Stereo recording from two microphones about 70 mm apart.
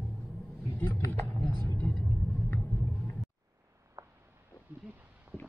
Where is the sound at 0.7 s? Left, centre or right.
Left.